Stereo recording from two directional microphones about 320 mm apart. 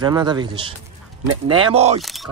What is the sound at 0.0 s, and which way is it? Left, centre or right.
Speech, centre.